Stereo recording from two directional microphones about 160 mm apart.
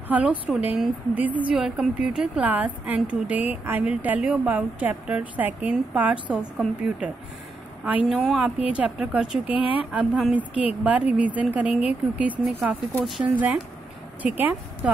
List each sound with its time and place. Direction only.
0.1 s a woman's voice: 10° right (ahead or behind)
9.5 s a woman's voice: 35° left (ahead or behind)
9.9 s a woman's voice: 5° right (ahead or behind)